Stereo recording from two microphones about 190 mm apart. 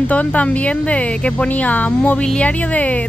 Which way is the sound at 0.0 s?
10° left (ahead or behind).